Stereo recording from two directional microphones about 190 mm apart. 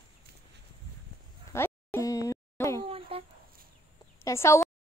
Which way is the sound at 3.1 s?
30° right (ahead or behind).